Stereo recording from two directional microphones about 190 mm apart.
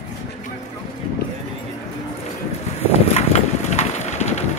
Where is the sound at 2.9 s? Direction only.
35° left (ahead or behind).